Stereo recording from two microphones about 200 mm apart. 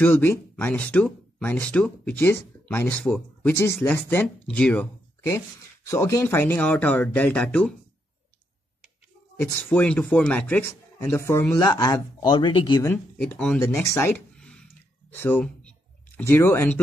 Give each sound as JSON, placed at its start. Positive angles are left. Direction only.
{"t": 0.0, "sound": "speech", "side_deg": 10}
{"t": 9.4, "sound": "speech", "side_deg": 10}
{"t": 12.9, "sound": "speech", "side_deg": 5}
{"t": 13.8, "sound": "a sound", "side_deg": 10}
{"t": 15.1, "sound": "speech", "side_deg": 10}